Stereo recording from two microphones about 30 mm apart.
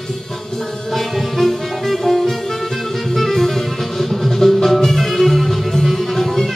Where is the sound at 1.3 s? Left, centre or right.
Centre.